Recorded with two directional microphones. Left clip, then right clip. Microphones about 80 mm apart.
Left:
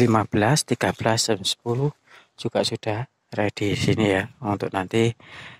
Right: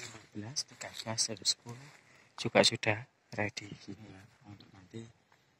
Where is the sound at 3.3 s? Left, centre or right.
Left.